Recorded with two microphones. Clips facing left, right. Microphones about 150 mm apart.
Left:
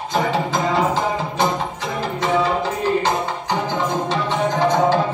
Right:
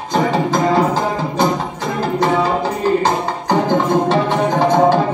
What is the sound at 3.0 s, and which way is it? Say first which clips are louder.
Music: right 4 dB; 55° right (ahead or behind).